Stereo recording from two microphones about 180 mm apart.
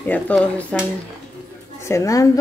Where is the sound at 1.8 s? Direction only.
15° left (ahead or behind).